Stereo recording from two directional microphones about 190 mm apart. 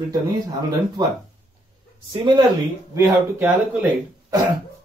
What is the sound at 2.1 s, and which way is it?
Speech, 20° right (ahead or behind).